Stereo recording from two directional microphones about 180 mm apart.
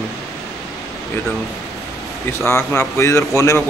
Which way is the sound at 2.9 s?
15° left (ahead or behind).